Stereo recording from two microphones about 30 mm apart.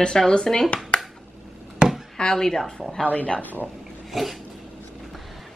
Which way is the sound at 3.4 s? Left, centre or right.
Left.